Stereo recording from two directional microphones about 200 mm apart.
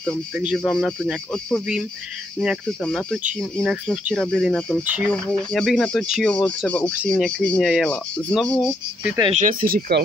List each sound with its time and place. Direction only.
0.4 s speech: centre (ahead or behind)
4.8 s speech: 10° right (ahead or behind)
5.1 s speech: 5° left (ahead or behind)
9.3 s speech: 40° right (ahead or behind)